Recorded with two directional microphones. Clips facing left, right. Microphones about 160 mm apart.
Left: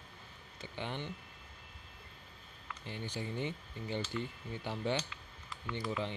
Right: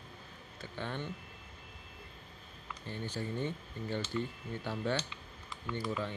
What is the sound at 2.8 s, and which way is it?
Speech, 15° left (ahead or behind).